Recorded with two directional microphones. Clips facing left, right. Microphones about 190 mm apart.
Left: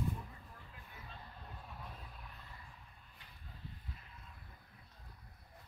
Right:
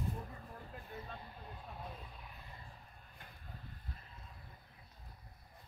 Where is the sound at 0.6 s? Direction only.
45° right (ahead or behind).